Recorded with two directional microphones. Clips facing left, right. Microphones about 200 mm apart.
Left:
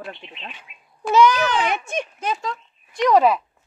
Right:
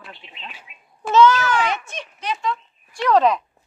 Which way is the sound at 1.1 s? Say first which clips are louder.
Right 1 dB; 15° left (ahead or behind).